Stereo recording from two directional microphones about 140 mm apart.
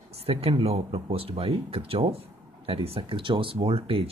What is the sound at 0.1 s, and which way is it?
Speech, 45° right (ahead or behind).